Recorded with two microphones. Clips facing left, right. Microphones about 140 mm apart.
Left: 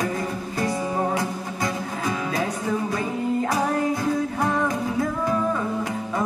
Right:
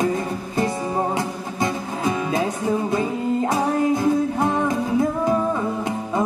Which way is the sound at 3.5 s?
25° right (ahead or behind).